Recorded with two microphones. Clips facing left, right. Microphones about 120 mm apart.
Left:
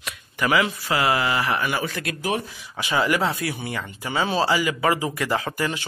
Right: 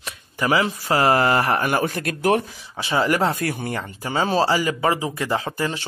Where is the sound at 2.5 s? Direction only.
30° right (ahead or behind).